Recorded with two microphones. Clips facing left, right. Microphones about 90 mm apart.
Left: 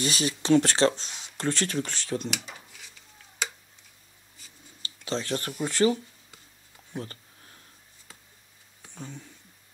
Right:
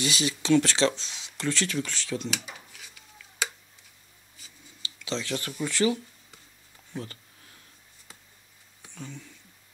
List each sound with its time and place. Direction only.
0.0 s speech: 40° left (ahead or behind)
2.4 s dishes: 5° right (ahead or behind)
4.8 s a sound: 40° left (ahead or behind)
5.6 s speech: 40° left (ahead or behind)
7.0 s a sound: 35° left (ahead or behind)
8.9 s speech: 35° left (ahead or behind)